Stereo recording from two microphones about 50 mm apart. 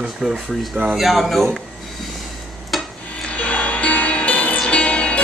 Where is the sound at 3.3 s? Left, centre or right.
Left.